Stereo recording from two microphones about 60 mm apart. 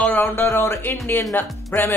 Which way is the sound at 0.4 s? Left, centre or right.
Left.